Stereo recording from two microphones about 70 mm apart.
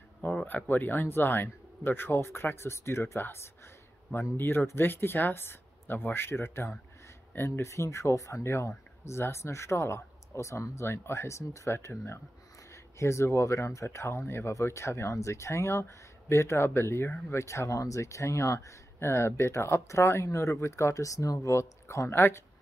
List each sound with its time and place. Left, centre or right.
0.2 s speech: left